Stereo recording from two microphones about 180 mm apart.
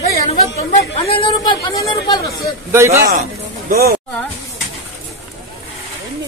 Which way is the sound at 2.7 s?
15° right (ahead or behind).